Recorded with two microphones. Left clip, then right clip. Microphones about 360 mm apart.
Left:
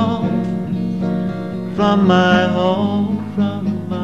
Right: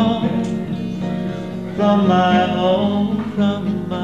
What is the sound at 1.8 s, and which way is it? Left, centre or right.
Mantra, left.